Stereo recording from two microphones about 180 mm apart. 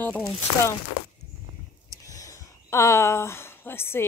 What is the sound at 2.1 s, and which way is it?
Speech, 20° left (ahead or behind).